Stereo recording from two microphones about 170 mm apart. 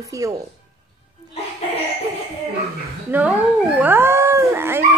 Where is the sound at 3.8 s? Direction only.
15° right (ahead or behind).